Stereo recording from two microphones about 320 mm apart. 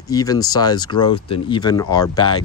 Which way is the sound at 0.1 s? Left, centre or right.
Centre.